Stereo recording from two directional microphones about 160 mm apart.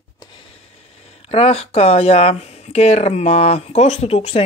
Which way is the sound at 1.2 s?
40° left (ahead or behind).